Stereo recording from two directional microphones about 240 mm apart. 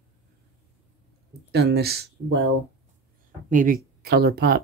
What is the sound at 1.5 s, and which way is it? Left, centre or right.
Speech, right.